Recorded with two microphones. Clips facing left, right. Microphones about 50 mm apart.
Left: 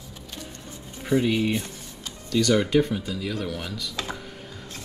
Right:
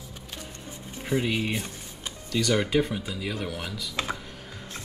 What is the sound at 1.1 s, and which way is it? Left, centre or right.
Speech, centre.